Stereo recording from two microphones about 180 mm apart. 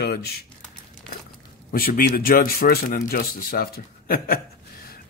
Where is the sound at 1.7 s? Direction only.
50° left (ahead or behind).